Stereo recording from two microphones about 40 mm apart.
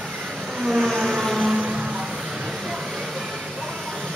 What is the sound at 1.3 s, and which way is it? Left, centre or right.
Vehicle, centre.